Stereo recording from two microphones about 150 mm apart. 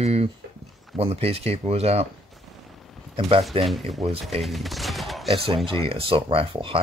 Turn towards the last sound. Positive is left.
turn(degrees=-35)  # may be behind; listen again after turning